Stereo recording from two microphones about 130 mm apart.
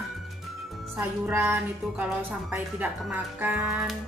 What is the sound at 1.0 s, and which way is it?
Speech, 15° right (ahead or behind).